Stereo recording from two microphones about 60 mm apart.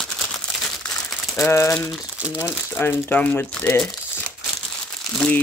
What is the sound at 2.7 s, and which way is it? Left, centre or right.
Speech, left.